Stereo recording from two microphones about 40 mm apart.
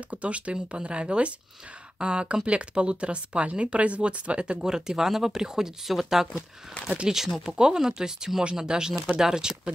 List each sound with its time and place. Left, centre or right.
0.1 s speech: right
4.6 s speech: centre